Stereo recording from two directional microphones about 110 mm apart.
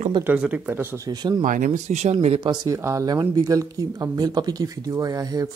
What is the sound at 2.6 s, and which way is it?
Speech, 30° right (ahead or behind).